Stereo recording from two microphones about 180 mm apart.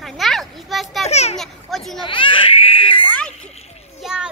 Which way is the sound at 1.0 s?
35° left (ahead or behind).